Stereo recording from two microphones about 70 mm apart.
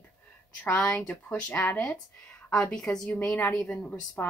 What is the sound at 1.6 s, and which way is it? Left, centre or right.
A woman's voice, left.